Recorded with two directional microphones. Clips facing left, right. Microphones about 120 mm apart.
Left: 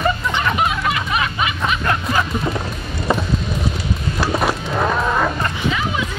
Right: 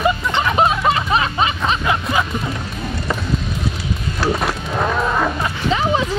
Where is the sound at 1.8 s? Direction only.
5° right (ahead or behind).